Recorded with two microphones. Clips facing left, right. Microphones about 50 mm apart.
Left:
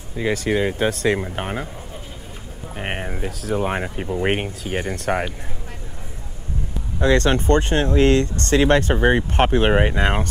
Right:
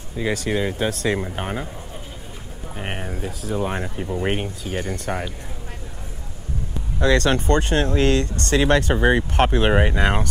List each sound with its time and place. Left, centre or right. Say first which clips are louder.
0.2 s speech: left 2 dB; left
1.3 s speech: left 1 dB; centre
2.7 s speech: left 2 dB; left
4.9 s speech: left 4 dB; left
7.0 s speech: left 1 dB; left